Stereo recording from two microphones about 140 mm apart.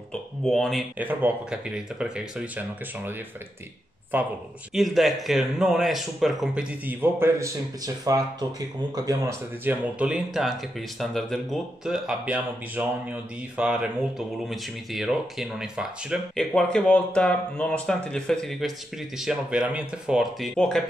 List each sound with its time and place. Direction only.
0.5 s speech: centre (ahead or behind)
0.9 s speech: 10° right (ahead or behind)
4.1 s speech: 15° right (ahead or behind)
4.7 s speech: centre (ahead or behind)
6.9 s speech: 15° right (ahead or behind)
9.7 s speech: 10° right (ahead or behind)